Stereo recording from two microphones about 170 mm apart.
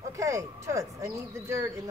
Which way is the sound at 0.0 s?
20° right (ahead or behind).